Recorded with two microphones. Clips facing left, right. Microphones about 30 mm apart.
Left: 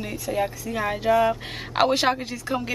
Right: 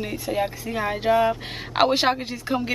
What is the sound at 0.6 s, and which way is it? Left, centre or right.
Speech, right.